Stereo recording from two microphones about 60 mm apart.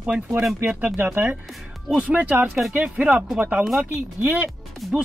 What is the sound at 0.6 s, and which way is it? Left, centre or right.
Speech, right.